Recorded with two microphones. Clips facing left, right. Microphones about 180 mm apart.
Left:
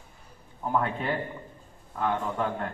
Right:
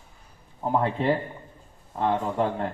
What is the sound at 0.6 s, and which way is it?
A man's voice, 30° right (ahead or behind).